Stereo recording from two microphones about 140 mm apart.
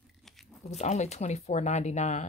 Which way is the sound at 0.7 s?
55° left (ahead or behind).